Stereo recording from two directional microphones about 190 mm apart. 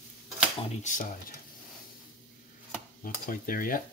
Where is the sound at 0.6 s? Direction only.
40° left (ahead or behind).